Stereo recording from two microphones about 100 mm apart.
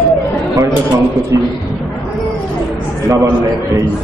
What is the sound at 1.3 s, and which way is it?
Speech, 35° right (ahead or behind).